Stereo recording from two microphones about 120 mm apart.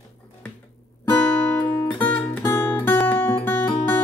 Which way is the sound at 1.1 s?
15° left (ahead or behind).